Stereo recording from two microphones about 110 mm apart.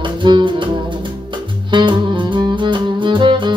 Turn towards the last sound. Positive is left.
turn(degrees=-45)  # may be behind; listen again after turning